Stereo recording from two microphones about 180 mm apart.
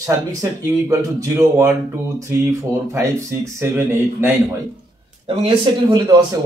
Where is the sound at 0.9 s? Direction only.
15° right (ahead or behind).